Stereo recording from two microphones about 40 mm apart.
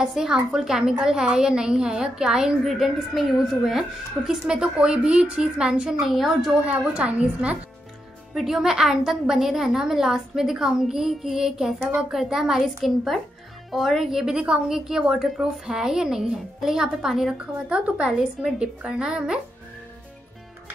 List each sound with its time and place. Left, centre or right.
0.0 s a woman's voice: centre
2.6 s a woman's voice: centre
4.3 s a woman's voice: right
5.9 s a woman's voice: centre
6.5 s a woman's voice: right
8.4 s a woman's voice: centre
12.8 s speech: centre
14.2 s a woman's voice: right
17.6 s a woman's voice: right